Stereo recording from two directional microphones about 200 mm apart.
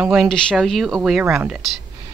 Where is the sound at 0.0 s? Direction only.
Centre (ahead or behind).